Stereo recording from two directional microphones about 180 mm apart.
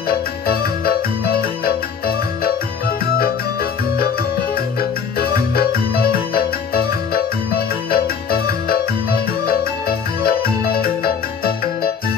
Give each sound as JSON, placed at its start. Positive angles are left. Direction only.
{"t": 4.6, "sound": "music", "side_deg": 55}
{"t": 6.7, "sound": "music", "side_deg": 60}